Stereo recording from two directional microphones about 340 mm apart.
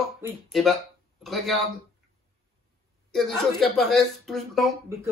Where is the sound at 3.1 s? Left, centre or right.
Centre.